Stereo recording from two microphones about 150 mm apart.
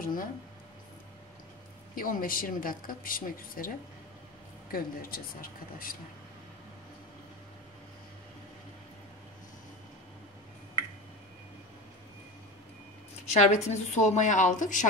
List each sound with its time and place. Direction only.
0.0 s speech: 70° left (ahead or behind)
2.0 s speech: 70° left (ahead or behind)
13.2 s a woman's voice: 50° left (ahead or behind)